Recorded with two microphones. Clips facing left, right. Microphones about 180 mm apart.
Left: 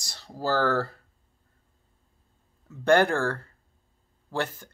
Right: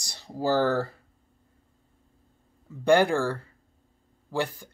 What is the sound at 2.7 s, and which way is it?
Speech, 10° right (ahead or behind).